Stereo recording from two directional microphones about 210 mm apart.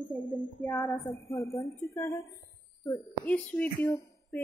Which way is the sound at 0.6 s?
10° left (ahead or behind).